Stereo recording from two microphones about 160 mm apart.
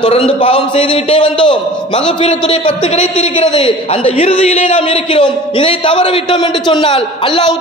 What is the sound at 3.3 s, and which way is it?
A man's voice, 30° left (ahead or behind).